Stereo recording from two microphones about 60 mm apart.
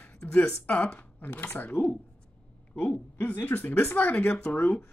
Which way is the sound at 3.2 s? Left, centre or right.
Left.